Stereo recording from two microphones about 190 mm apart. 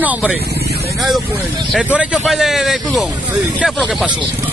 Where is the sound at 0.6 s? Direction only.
55° right (ahead or behind).